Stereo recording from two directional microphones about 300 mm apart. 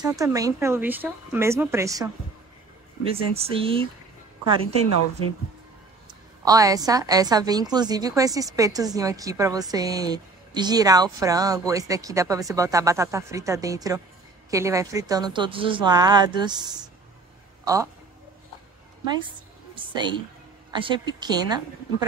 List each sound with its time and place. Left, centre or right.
0.0 s a woman's voice: centre
3.1 s speech: centre
6.4 s a woman's voice: centre
19.7 s a woman's voice: centre